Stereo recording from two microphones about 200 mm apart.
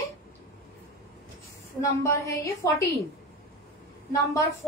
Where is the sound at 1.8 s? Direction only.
15° left (ahead or behind).